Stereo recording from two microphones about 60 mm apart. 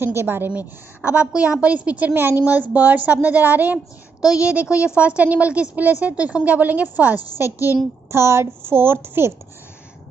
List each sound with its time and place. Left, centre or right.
0.0 s a child's voice: right
0.5 s a woman's voice: right
2.1 s a child's voice: right
7.4 s a woman's voice: left
7.7 s a child's voice: right